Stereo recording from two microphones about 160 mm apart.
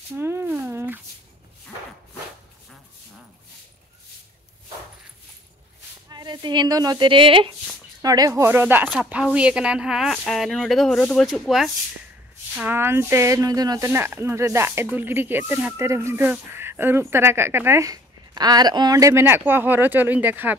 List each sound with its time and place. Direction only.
0.2 s a sound: 15° right (ahead or behind)
6.0 s speech: 25° right (ahead or behind)
8.0 s speech: 25° right (ahead or behind); by 11.7 s centre (ahead or behind)
12.5 s speech: 10° right (ahead or behind)